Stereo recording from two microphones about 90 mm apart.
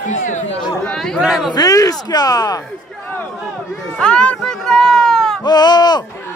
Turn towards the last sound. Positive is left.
turn(degrees=50)  # may be behind; listen again after turning